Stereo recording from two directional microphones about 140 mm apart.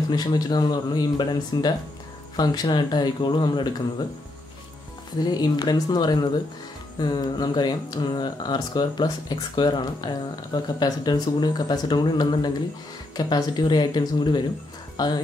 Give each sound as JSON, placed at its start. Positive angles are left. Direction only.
{"t": 0.1, "sound": "speech", "side_deg": 30}
{"t": 5.2, "sound": "speech", "side_deg": 30}